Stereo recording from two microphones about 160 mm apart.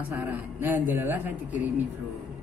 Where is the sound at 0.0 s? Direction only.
10° right (ahead or behind).